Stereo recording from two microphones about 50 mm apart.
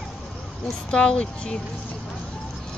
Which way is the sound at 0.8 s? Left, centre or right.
Left.